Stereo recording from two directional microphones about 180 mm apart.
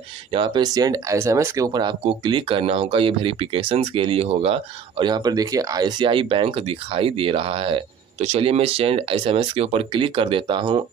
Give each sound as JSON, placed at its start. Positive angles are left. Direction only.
{"t": 0.3, "sound": "speech", "side_deg": -25}